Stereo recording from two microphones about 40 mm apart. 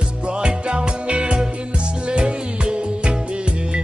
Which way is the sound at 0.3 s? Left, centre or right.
Right.